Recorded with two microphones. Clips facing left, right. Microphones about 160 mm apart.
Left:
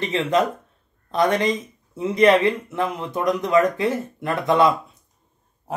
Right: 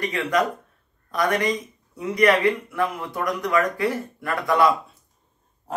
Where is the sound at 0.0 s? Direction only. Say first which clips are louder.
Left 2 dB; 25° left (ahead or behind).